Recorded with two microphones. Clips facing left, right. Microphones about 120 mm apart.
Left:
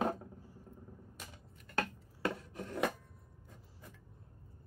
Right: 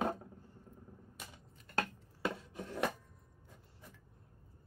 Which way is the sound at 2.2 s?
Centre (ahead or behind).